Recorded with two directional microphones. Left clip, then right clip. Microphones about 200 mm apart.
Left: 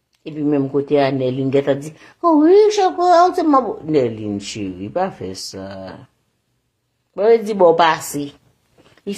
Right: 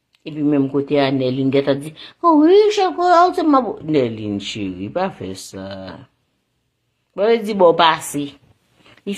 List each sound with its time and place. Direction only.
0.2 s a woman's voice: 25° right (ahead or behind)
7.2 s a woman's voice: 25° right (ahead or behind)
8.8 s a sound: 30° right (ahead or behind)